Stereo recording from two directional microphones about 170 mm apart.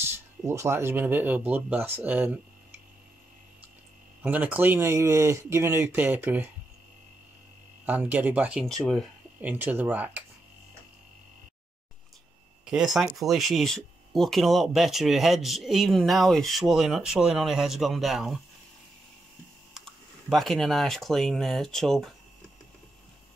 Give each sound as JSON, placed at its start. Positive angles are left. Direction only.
{"t": 0.1, "sound": "speech", "side_deg": -15}
{"t": 4.2, "sound": "speech", "side_deg": -10}
{"t": 7.8, "sound": "speech", "side_deg": -10}
{"t": 12.6, "sound": "speech", "side_deg": 0}
{"t": 19.7, "sound": "speech", "side_deg": 0}